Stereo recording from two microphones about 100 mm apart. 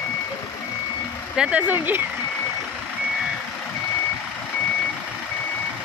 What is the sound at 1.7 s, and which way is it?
Speech, 20° right (ahead or behind).